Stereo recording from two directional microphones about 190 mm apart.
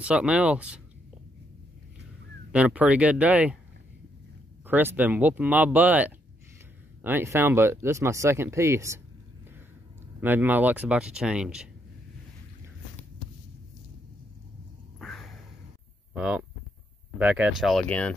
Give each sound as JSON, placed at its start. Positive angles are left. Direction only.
{"t": 0.0, "sound": "speech", "side_deg": -5}
{"t": 2.5, "sound": "speech", "side_deg": -5}
{"t": 4.6, "sound": "speech", "side_deg": -10}
{"t": 10.2, "sound": "speech", "side_deg": -10}
{"t": 15.0, "sound": "a sound", "side_deg": 0}
{"t": 16.1, "sound": "speech", "side_deg": -5}